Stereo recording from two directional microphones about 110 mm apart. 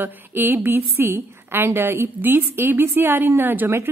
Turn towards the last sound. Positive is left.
turn(degrees=-20)  # may be behind; listen again after turning